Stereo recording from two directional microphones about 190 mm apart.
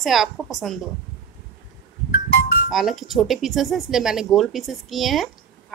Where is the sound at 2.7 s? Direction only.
Centre (ahead or behind).